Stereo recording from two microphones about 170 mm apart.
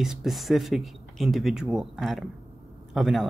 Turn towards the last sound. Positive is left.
turn(degrees=0)  # may be behind; listen again after turning